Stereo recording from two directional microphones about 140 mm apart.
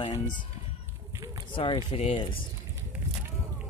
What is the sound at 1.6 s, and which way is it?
Speech, 40° left (ahead or behind).